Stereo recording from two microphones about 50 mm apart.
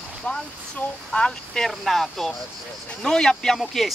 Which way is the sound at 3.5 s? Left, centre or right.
Centre.